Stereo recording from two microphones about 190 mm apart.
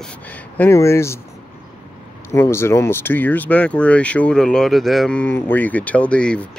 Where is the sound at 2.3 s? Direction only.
15° left (ahead or behind).